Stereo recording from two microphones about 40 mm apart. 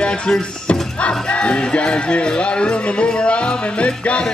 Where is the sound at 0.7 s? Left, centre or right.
Left.